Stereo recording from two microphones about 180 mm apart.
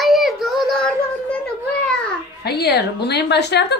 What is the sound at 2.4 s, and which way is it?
A woman's voice, 65° left (ahead or behind).